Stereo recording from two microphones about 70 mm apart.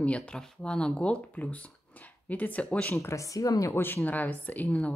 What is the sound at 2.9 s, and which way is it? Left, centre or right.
Speech, left.